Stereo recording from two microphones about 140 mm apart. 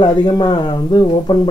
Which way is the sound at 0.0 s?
30° left (ahead or behind).